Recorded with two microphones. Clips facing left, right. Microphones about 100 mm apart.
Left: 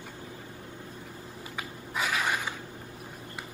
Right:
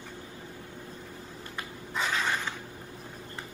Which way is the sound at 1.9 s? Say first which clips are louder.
Even; 10° left (ahead or behind).